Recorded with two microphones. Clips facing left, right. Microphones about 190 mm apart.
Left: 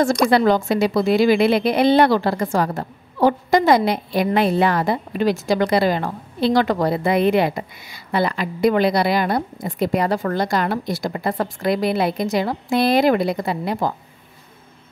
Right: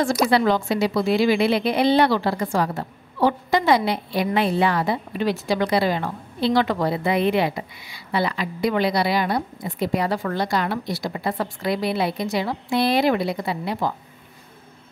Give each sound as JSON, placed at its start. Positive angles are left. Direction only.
{"t": 0.4, "sound": "a woman's voice", "side_deg": 45}